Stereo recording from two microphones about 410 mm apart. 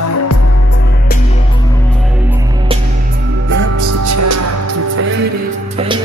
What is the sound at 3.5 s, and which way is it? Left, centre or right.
Music, right.